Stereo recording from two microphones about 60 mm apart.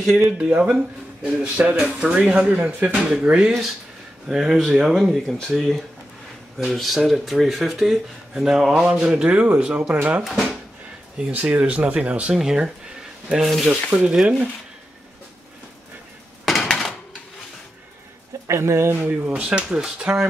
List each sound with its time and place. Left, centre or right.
0.0 s speech: centre
1.2 s speech: right
3.0 s speech: centre
3.3 s speech: centre
10.2 s speech: centre
11.1 s speech: centre
11.4 s speech: right
12.4 s speech: centre
13.8 s speech: centre
16.6 s a sound: centre
18.5 s speech: right
18.9 s speech: right